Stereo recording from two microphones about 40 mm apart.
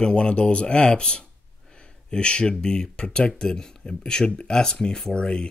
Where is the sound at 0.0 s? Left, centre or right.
Left.